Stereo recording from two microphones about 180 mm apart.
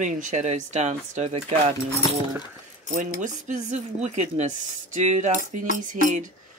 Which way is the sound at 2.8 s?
45° right (ahead or behind).